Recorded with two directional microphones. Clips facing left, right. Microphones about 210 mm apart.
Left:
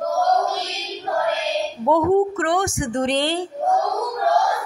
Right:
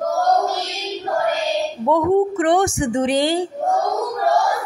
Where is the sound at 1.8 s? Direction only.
Centre (ahead or behind).